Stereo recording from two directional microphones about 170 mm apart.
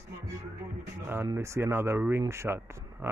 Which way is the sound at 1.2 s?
15° right (ahead or behind).